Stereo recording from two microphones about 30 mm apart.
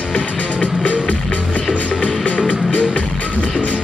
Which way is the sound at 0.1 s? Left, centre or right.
Left.